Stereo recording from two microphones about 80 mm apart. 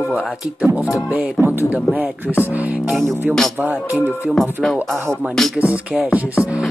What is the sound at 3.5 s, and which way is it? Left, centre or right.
Speech, right.